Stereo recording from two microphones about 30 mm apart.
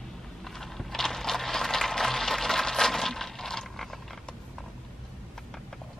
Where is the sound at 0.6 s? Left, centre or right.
Centre.